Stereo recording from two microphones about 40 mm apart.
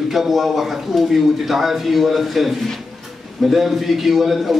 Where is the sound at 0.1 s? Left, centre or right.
Centre.